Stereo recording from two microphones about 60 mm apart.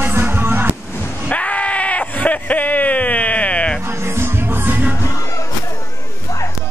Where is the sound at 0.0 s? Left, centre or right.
Right.